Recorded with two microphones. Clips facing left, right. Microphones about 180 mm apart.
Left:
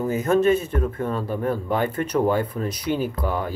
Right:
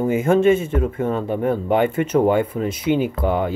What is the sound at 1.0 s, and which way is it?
Speech, 25° right (ahead or behind).